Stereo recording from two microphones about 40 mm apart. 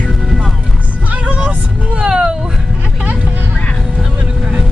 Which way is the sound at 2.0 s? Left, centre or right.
Centre.